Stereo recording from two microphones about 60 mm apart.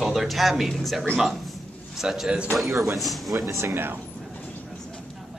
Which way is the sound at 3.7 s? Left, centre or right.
Right.